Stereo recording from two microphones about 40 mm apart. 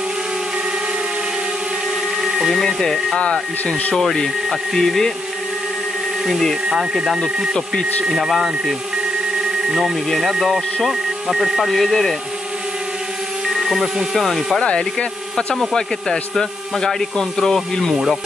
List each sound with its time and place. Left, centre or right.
2.2 s a sound: centre
2.5 s speech: centre
3.2 s speech: left
3.9 s speech: centre
6.7 s speech: centre
13.5 s a sound: centre
14.1 s speech: centre
14.6 s speech: left
15.7 s speech: centre